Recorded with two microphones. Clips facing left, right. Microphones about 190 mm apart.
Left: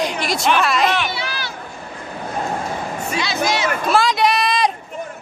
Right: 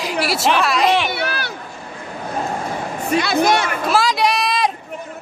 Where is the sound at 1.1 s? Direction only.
60° right (ahead or behind).